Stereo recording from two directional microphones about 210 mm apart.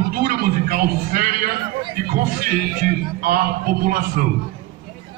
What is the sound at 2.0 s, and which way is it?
Music, 40° right (ahead or behind).